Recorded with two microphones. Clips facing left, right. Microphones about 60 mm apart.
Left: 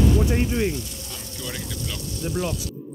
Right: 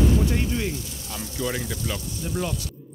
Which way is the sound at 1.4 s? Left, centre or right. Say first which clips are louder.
Right 5 dB; centre.